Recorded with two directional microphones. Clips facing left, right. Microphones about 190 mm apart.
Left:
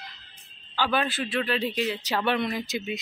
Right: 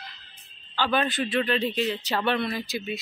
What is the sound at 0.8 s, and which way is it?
Speech, 5° left (ahead or behind).